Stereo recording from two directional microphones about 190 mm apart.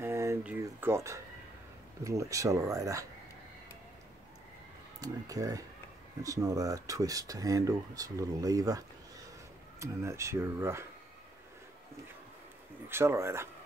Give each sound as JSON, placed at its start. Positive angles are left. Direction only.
{"t": 0.0, "sound": "a sound", "side_deg": -15}
{"t": 2.0, "sound": "speech", "side_deg": -15}
{"t": 5.0, "sound": "speech", "side_deg": -20}
{"t": 12.8, "sound": "speech", "side_deg": -15}